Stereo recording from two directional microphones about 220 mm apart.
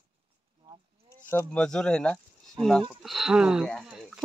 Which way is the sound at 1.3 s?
10° left (ahead or behind).